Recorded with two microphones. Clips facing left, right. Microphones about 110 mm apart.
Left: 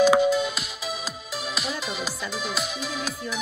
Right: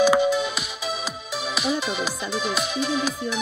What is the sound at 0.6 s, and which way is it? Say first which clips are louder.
Music: right 3 dB; 70° right (ahead or behind).